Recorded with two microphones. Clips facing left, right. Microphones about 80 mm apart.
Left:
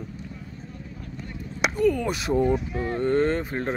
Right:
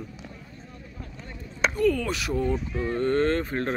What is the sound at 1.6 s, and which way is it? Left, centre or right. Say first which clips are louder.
Speech: left 1 dB; centre.